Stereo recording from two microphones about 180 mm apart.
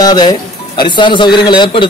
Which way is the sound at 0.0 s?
20° left (ahead or behind).